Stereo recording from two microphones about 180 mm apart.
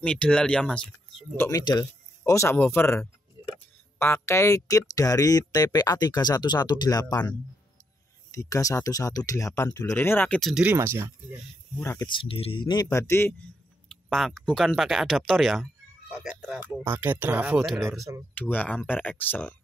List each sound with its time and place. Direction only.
0.0 s speech: 5° left (ahead or behind)
1.6 s speech: 20° left (ahead or behind); by 11.3 s 15° right (ahead or behind)
11.8 s speech: 15° left (ahead or behind)
12.1 s speech: 30° left (ahead or behind)
14.0 s speech: centre (ahead or behind)
18.3 s speech: 10° left (ahead or behind)